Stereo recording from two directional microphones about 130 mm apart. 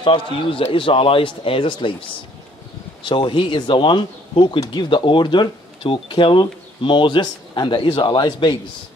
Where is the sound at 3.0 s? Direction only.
40° left (ahead or behind).